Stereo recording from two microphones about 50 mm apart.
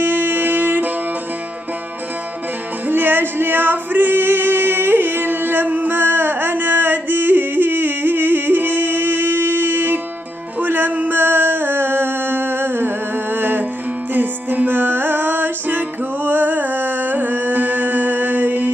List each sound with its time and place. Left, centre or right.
0.0 s music: right
2.9 s music: right